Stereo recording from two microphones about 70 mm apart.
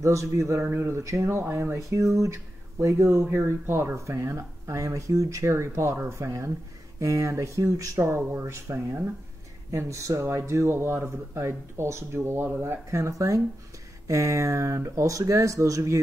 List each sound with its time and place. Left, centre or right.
0.0 s speech: right
9.7 s speech: right